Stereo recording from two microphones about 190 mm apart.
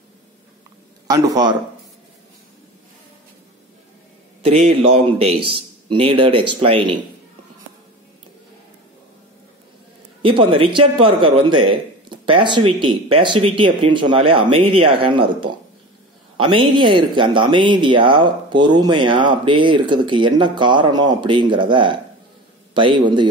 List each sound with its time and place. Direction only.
1.0 s speech: 20° right (ahead or behind)
4.4 s a man's voice: 35° right (ahead or behind)
10.2 s speech: 25° right (ahead or behind)